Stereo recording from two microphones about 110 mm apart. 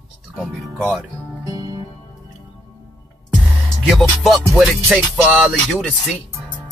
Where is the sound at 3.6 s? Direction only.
Centre (ahead or behind).